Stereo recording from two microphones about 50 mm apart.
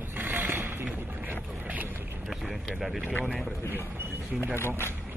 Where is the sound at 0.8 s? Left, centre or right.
Right.